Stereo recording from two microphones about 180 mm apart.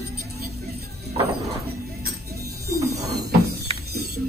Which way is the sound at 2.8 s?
15° right (ahead or behind).